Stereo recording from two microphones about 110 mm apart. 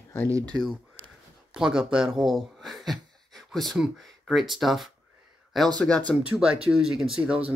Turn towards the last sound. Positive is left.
turn(degrees=-5)  # may be behind; listen again after turning